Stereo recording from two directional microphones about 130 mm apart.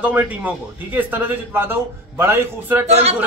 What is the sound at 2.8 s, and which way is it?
Speech, 55° right (ahead or behind).